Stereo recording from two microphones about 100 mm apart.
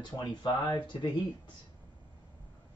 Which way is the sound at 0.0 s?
45° left (ahead or behind).